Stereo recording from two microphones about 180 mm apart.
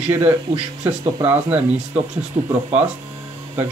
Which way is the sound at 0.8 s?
10° right (ahead or behind).